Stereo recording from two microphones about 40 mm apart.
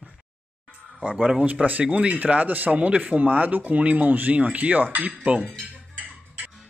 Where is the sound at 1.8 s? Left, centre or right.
Right.